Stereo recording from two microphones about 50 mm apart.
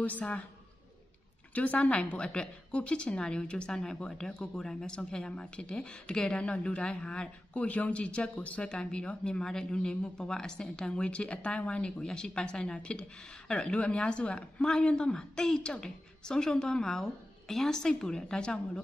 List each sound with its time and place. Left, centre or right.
0.0 s speech: left
1.5 s a woman's voice: left; by 18.6 s centre